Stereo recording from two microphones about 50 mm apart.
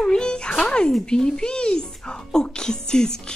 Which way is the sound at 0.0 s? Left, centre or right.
Centre.